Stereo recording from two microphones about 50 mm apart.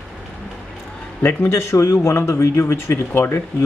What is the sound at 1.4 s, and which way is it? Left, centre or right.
Speech, left.